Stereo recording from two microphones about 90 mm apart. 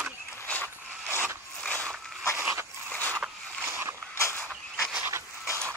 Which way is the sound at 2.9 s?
15° left (ahead or behind).